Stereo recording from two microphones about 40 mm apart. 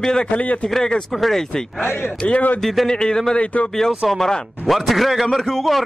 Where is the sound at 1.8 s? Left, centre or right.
Left.